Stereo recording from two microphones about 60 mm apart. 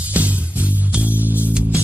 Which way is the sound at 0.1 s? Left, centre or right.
Right.